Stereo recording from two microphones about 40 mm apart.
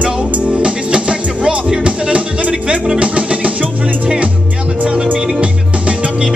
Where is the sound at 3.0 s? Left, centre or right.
Right.